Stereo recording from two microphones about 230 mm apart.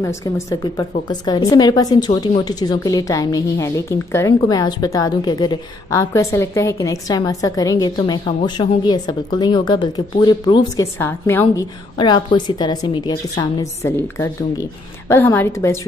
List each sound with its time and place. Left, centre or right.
0.0 s a woman's voice: centre